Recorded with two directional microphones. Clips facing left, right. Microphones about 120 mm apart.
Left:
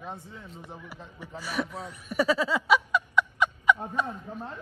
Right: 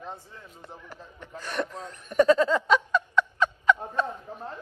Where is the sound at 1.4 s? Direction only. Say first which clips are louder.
Even; 5° left (ahead or behind).